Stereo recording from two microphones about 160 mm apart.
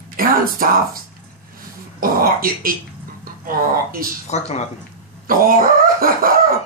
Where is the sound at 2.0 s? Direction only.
65° right (ahead or behind).